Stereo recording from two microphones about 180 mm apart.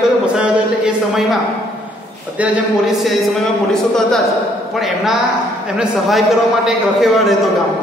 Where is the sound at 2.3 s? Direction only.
10° right (ahead or behind).